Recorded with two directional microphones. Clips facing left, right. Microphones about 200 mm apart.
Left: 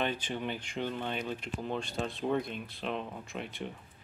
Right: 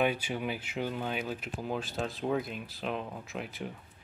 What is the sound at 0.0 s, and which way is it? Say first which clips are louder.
Speech: right 3 dB; 10° right (ahead or behind).